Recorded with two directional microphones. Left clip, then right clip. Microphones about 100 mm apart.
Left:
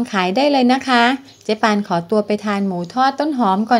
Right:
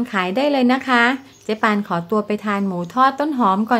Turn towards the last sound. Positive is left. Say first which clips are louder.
# left 2 dB
turn(degrees=15)  # may be behind; listen again after turning